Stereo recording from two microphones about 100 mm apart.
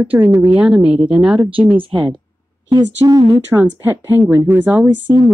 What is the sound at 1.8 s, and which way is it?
Speech, 55° right (ahead or behind).